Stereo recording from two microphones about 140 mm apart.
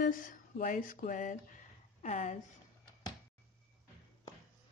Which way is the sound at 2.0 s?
55° left (ahead or behind).